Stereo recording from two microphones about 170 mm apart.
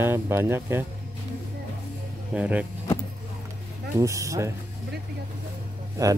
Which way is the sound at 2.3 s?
5° right (ahead or behind).